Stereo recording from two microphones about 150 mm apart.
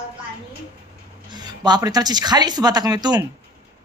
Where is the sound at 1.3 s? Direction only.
30° right (ahead or behind).